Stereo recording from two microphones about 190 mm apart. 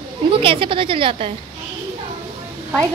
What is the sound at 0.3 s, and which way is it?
A woman's voice, 25° right (ahead or behind).